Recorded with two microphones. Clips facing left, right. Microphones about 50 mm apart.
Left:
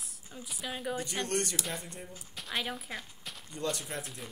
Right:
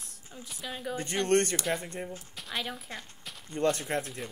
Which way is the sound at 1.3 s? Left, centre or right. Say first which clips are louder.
Right 11 dB; right.